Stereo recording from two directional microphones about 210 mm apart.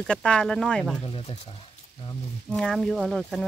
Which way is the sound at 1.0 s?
25° left (ahead or behind).